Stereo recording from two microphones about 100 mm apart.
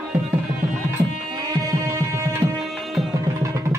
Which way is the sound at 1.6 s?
35° right (ahead or behind).